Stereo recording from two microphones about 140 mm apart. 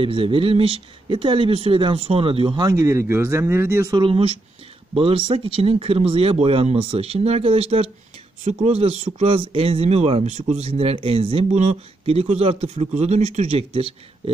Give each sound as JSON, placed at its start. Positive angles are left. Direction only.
{"t": 0.0, "sound": "speech", "side_deg": -40}
{"t": 2.7, "sound": "speech", "side_deg": -20}
{"t": 3.9, "sound": "speech", "side_deg": -40}